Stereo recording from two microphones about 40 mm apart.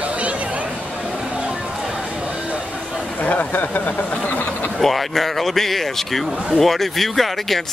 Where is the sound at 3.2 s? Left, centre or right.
Left.